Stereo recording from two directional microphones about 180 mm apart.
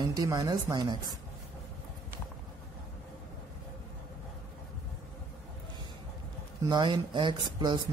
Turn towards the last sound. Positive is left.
turn(degrees=-25)  # may be behind; listen again after turning